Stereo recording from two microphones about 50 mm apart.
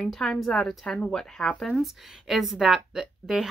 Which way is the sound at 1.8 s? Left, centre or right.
Centre.